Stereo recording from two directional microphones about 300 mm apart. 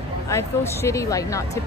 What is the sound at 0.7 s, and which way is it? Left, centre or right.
Speech, centre.